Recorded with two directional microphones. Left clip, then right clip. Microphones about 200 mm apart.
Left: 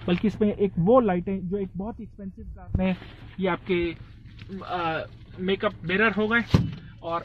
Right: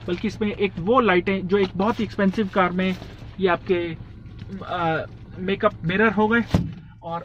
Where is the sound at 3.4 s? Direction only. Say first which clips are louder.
Right 6 dB; 45° left (ahead or behind).